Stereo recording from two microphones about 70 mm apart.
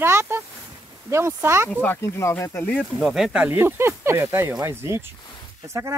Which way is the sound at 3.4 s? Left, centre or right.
Right.